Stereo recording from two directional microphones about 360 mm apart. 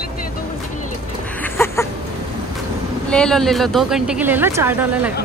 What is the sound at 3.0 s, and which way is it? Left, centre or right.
Speech, centre.